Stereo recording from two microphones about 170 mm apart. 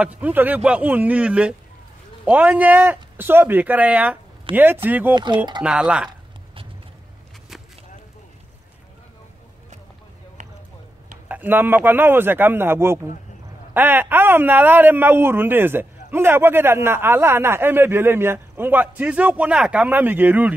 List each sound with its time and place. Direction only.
0.0 s speech: 10° right (ahead or behind)
5.1 s speech: 25° right (ahead or behind)
5.6 s speech: 5° right (ahead or behind)
6.0 s a sound: 30° right (ahead or behind)
10.4 s a sound: 45° right (ahead or behind)
11.2 s speech: 10° right (ahead or behind)